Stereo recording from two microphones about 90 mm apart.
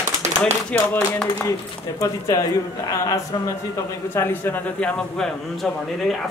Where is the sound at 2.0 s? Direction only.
40° left (ahead or behind).